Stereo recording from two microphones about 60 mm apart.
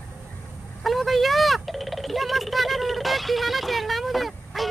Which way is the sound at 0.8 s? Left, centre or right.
Centre.